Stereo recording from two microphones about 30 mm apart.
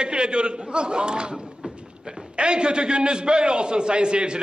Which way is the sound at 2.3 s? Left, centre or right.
Right.